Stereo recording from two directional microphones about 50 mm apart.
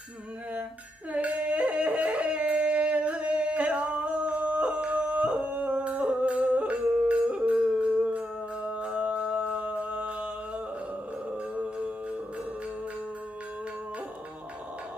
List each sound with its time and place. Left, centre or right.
1.1 s yodeling: right
8.6 s music: right
11.5 s music: right